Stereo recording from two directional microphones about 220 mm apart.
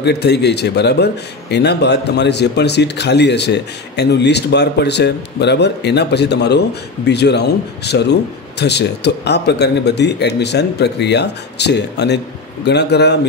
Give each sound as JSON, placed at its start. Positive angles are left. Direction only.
{"t": 0.0, "sound": "speech", "side_deg": 50}